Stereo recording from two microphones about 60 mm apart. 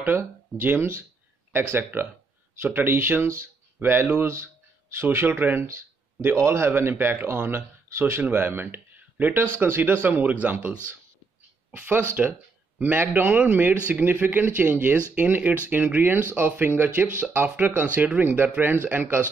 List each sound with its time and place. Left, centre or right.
0.7 s speech: right
4.3 s a sound: right
5.2 s speech: right
12.2 s speech: right